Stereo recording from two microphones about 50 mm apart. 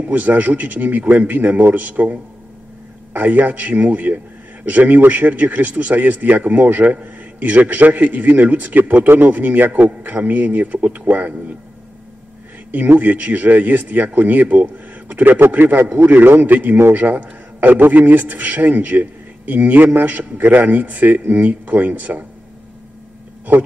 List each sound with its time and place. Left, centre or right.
0.0 s speech: right
12.7 s a man's voice: right